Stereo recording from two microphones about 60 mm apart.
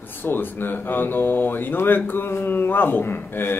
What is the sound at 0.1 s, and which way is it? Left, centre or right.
Speech, left.